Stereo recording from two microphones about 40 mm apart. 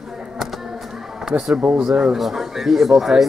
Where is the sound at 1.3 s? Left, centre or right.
Centre.